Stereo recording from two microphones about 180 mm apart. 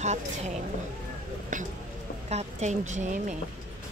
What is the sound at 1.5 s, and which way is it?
A woman's voice, 45° right (ahead or behind).